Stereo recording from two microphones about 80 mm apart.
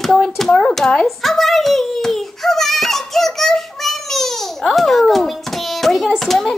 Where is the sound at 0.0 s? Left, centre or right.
Centre.